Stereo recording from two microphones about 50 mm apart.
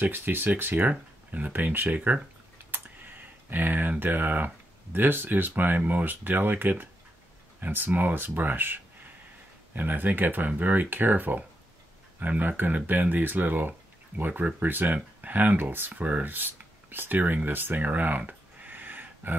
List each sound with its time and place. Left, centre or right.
0.0 s speech: right
1.9 s speech: right
2.7 s computer keyboard: right
4.0 s speech: right
15.9 s speech: right